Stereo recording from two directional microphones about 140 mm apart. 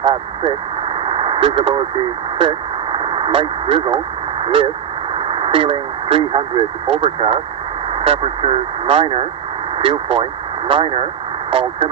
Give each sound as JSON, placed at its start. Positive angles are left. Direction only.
{"t": 0.0, "sound": "speech", "side_deg": -35}
{"t": 1.0, "sound": "radio", "side_deg": -35}
{"t": 5.3, "sound": "speech", "side_deg": -40}